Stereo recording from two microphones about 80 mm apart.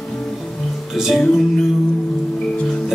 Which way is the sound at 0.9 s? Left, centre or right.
Centre.